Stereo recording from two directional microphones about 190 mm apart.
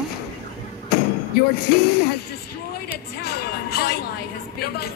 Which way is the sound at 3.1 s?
55° left (ahead or behind).